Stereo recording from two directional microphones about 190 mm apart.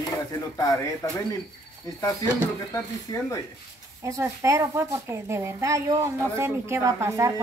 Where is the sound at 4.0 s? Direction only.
15° right (ahead or behind).